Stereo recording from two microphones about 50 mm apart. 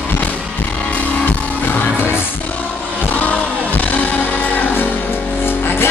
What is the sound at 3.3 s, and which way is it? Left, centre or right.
Music, left.